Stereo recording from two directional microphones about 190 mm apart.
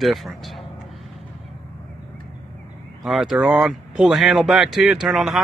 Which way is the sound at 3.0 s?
Centre (ahead or behind).